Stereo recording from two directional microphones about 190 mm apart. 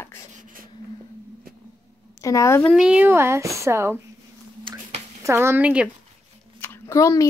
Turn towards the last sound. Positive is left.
turn(degrees=15)  # may be behind; listen again after turning